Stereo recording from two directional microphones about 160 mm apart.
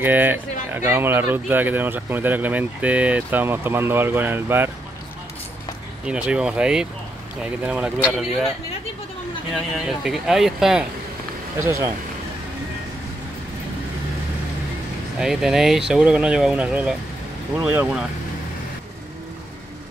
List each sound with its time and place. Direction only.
0.0 s speech: 10° right (ahead or behind)
6.0 s speech: 5° right (ahead or behind)
9.5 s speech: centre (ahead or behind)
11.6 s speech: 20° right (ahead or behind)
15.1 s speech: centre (ahead or behind)